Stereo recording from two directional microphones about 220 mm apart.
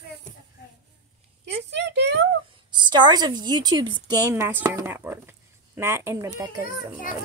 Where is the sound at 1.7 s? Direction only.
50° right (ahead or behind).